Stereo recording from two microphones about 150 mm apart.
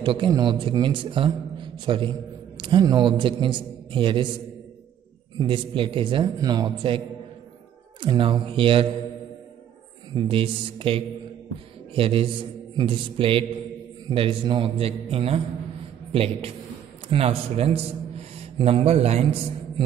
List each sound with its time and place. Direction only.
0.0 s a man's voice: 35° right (ahead or behind)
5.4 s a man's voice: 35° right (ahead or behind)
8.0 s a man's voice: 35° right (ahead or behind)
10.1 s a man's voice: 35° right (ahead or behind)